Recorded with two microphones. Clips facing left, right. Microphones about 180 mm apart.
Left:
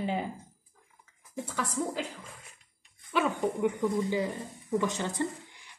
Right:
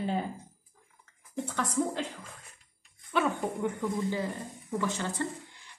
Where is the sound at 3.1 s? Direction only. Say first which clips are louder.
Left 1 dB; 15° left (ahead or behind).